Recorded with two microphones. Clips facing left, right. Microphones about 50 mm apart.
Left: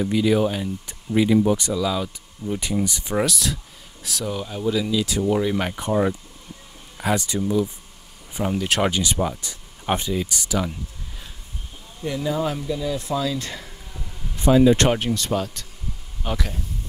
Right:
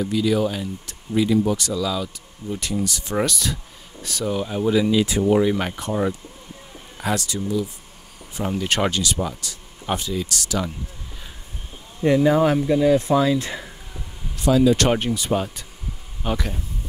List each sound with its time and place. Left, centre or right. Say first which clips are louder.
0.0 s speech: left 1 dB; centre
3.2 s speech: even; centre; by 5.2 s right
5.2 s speech: right 2 dB; centre
7.2 s speech: left 2 dB; centre
8.5 s speech: even; centre
9.0 s speech: left 1 dB; left
12.0 s speech: right 8 dB; right
13.4 s a sound: right 3 dB; centre
14.4 s speech: left 1 dB; left
14.9 s speech: right 1 dB; centre